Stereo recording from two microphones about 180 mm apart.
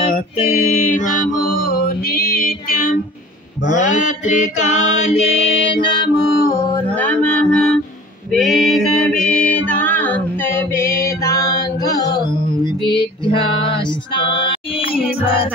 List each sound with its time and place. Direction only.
0.7 s mantra: 40° left (ahead or behind); by 6.8 s 20° left (ahead or behind)
6.9 s mantra: 10° left (ahead or behind)
8.3 s a sound: centre (ahead or behind)
9.7 s music: 10° left (ahead or behind)
12.6 s female singing: 25° left (ahead or behind)